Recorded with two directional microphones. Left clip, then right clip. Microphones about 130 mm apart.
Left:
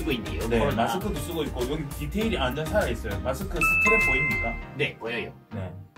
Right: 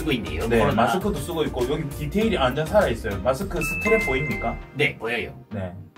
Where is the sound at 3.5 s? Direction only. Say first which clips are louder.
Left 6 dB; centre (ahead or behind).